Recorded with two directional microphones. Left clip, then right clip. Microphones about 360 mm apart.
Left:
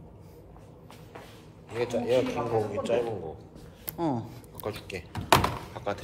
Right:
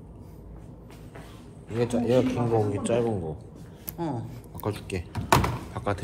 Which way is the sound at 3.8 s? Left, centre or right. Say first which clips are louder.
Left 2 dB; centre.